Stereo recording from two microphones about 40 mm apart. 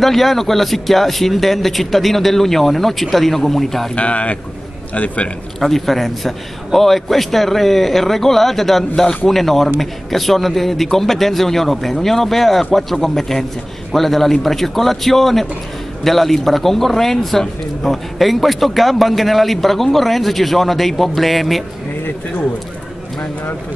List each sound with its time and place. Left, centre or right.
0.0 s a man's voice: centre
3.9 s speech: left
5.6 s a man's voice: centre